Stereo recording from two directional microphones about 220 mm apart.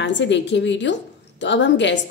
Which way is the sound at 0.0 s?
55° left (ahead or behind).